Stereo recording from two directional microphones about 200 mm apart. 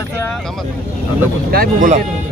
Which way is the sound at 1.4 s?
45° right (ahead or behind).